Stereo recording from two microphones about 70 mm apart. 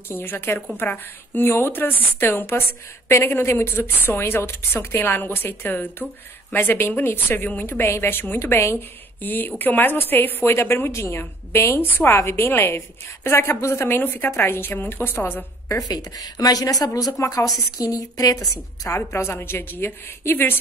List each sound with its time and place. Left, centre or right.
0.1 s a woman's voice: left
8.4 s a woman's voice: left
9.2 s a woman's voice: left
15.9 s a woman's voice: left
17.2 s a woman's voice: left
18.9 s a woman's voice: left